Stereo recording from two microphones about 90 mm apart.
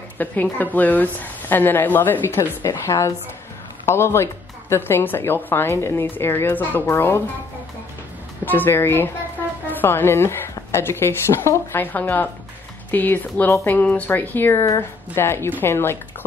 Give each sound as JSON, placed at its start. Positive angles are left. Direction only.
{"t": 0.2, "sound": "a woman's voice", "side_deg": 20}
{"t": 8.5, "sound": "a woman's voice", "side_deg": 25}